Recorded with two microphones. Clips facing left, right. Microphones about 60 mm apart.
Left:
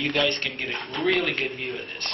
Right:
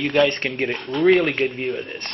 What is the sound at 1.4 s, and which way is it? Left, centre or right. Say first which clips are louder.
Speech: right 7 dB; centre.